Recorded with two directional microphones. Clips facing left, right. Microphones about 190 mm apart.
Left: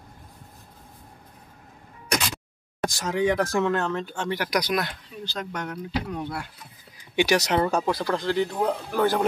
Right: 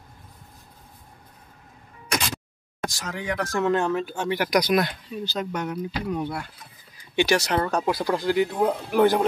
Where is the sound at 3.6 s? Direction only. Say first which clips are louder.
Right 3 dB; 15° right (ahead or behind).